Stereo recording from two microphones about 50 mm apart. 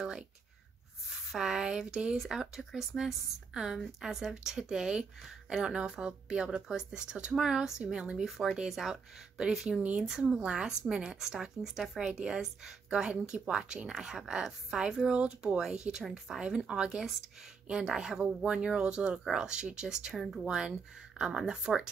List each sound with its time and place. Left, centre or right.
1.1 s speech: centre
2.1 s a woman's voice: centre; by 8.3 s right
8.3 s speech: centre
10.0 s a woman's voice: centre